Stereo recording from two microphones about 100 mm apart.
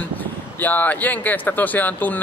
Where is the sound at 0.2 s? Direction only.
15° left (ahead or behind).